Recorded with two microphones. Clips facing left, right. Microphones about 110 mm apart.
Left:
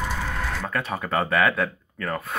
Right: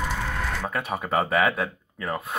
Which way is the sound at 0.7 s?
15° right (ahead or behind).